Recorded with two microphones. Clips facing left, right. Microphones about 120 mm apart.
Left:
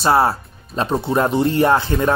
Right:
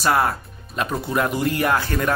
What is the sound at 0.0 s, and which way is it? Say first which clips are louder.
Speech: left 4 dB; 30° left (ahead or behind).